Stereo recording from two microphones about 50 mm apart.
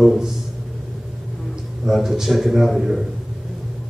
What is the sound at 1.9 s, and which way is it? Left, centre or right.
A man's voice, centre.